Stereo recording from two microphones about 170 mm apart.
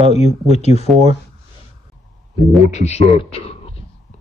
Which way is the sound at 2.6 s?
40° left (ahead or behind).